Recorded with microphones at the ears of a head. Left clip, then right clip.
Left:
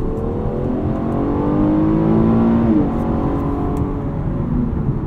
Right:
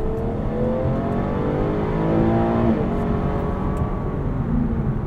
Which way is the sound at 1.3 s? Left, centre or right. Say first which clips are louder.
Left 5 dB; left.